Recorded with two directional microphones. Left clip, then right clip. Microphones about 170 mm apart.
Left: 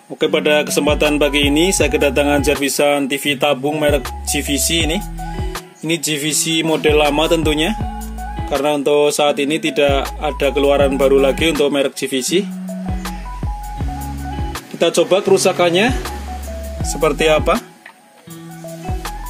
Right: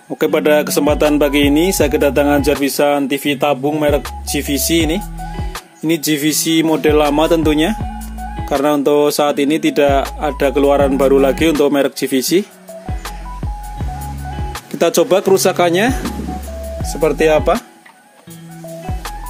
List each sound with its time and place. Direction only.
0.2 s speech: 30° right (ahead or behind)
14.8 s speech: 40° right (ahead or behind)
16.9 s speech: 15° right (ahead or behind)